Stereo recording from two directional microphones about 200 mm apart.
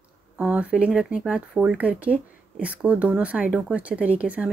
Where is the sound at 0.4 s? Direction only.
5° right (ahead or behind).